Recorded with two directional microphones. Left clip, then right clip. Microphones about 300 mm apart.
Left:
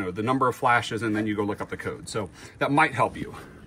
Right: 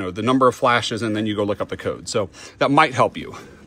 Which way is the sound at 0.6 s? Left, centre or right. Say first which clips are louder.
Right 1 dB; right.